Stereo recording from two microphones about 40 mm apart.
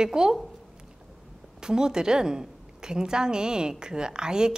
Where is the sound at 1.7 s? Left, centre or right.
Centre.